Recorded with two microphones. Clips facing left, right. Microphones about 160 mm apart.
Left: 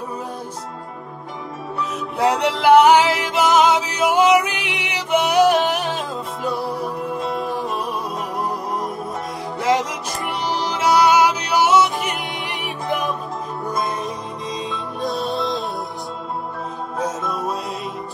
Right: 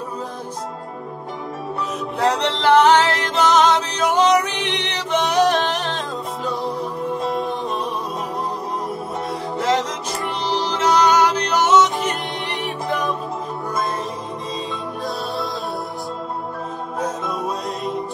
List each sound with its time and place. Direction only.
2.2 s music: 10° left (ahead or behind)
9.7 s music: 10° left (ahead or behind)
15.0 s music: 20° left (ahead or behind)
17.3 s music: centre (ahead or behind)